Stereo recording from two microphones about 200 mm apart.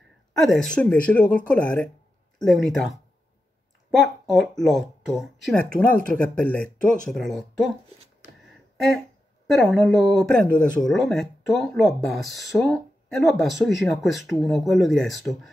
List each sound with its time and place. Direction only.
0.4 s speech: centre (ahead or behind)
3.9 s speech: centre (ahead or behind)
8.7 s speech: centre (ahead or behind)